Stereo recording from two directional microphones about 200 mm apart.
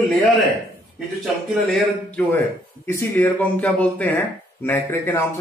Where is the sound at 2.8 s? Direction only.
10° left (ahead or behind).